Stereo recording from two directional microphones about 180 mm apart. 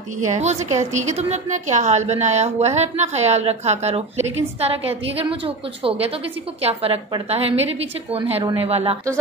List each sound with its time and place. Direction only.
0.2 s a woman's voice: 40° right (ahead or behind)